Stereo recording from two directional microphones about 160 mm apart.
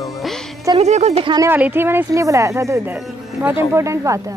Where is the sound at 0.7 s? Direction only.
45° right (ahead or behind).